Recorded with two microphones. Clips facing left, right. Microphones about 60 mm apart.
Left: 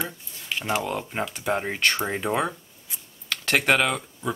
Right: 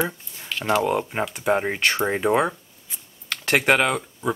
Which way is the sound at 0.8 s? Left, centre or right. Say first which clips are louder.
Right 5 dB; centre.